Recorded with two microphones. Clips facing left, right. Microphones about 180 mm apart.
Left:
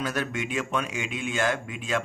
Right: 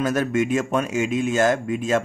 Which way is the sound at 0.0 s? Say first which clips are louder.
Right 9 dB; 45° right (ahead or behind).